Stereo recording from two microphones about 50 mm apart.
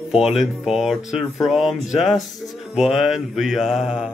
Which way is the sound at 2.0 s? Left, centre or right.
Centre.